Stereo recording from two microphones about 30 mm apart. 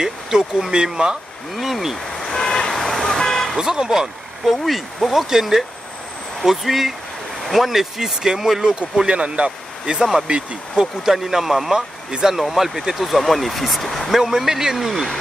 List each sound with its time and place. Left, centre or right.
0.0 s speech: centre
1.5 s speech: centre
2.1 s vehicle: centre
3.5 s speech: right
4.5 s speech: centre
5.1 s speech: centre
8.0 s speech: centre
9.0 s speech: right
9.9 s speech: centre
12.1 s speech: right
12.4 s speech: centre
14.1 s speech: centre